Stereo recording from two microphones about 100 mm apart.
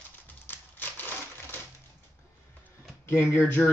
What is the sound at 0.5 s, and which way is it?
Typewriter, 20° left (ahead or behind).